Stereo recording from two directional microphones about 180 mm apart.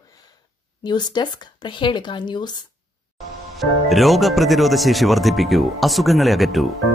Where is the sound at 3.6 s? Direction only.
Centre (ahead or behind).